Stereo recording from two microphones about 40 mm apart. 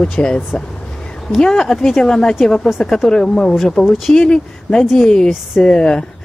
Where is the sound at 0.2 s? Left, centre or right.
Left.